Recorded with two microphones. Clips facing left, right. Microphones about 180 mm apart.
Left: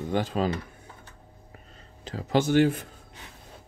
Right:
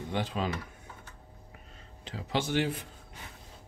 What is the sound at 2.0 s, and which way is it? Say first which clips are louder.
Speech: left 8 dB; 45° left (ahead or behind).